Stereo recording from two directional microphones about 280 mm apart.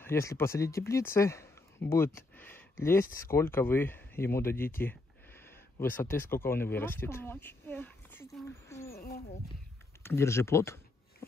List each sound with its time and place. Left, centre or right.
0.0 s speech: centre
10.0 s speech: centre